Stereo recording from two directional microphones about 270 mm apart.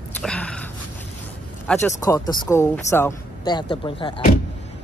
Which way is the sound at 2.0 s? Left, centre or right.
Centre.